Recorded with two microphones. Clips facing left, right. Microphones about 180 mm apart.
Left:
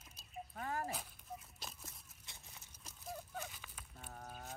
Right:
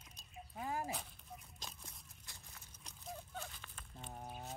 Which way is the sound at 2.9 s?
5° left (ahead or behind).